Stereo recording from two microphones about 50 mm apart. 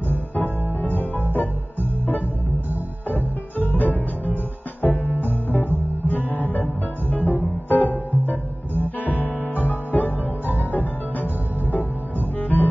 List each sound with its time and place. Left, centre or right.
0.1 s music: left
12.4 s double bass: left